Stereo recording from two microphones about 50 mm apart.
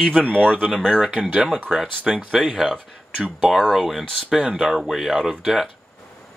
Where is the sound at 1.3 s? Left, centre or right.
Centre.